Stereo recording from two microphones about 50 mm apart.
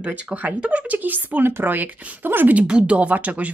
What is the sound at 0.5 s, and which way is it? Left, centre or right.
Speech, right.